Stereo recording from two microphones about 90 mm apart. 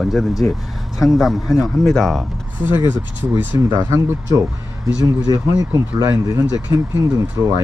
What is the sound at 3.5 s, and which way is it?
Speech, 40° right (ahead or behind).